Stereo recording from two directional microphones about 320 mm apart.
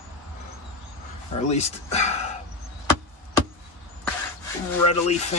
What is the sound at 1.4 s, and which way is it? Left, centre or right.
Speech, centre.